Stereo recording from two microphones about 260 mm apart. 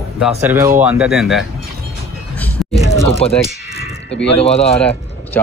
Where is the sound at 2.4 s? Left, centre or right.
Centre.